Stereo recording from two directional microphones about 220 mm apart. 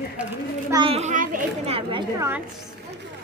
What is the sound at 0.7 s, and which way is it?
A child's voice, 25° right (ahead or behind).